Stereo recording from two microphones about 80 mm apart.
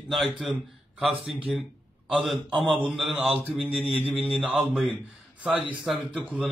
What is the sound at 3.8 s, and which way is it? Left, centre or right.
Speech, centre.